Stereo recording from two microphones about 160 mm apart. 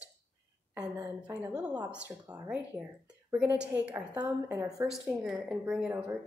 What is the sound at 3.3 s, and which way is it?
A woman's voice, 10° right (ahead or behind).